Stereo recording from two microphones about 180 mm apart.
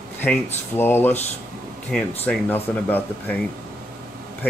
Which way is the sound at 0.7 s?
10° left (ahead or behind).